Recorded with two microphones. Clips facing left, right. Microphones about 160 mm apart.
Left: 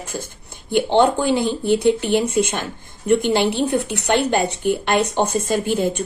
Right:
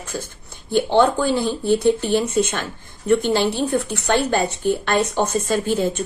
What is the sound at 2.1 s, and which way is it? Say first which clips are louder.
Speech: left 1 dB; 60° left (ahead or behind).